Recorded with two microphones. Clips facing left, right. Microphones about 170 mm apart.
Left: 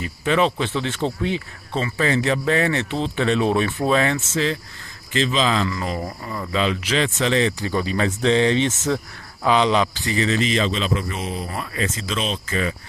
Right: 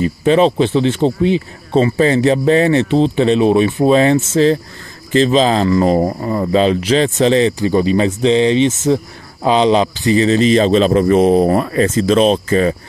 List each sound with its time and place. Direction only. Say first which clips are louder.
0.0 s speech: right 8 dB; 30° right (ahead or behind)